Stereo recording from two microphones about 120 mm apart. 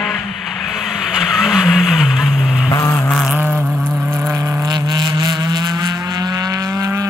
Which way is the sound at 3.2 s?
10° right (ahead or behind).